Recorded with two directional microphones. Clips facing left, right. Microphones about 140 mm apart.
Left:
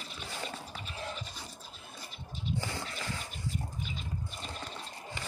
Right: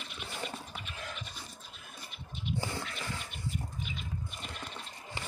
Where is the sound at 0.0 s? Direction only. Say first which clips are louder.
Even; 35° left (ahead or behind).